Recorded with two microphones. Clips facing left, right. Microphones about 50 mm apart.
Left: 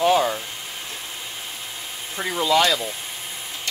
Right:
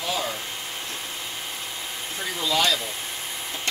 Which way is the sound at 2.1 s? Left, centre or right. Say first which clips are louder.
Left 6 dB; left.